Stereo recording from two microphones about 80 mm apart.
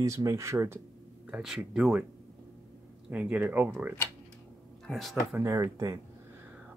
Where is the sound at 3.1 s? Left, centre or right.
Centre.